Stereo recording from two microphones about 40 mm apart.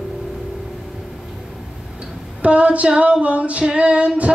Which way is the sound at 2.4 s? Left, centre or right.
Right.